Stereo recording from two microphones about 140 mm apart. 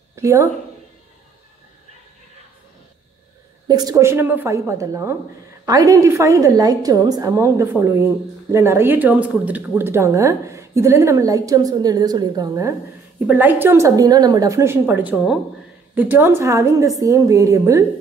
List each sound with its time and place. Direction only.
0.1 s speech: 20° right (ahead or behind)
3.6 s a woman's voice: 30° right (ahead or behind)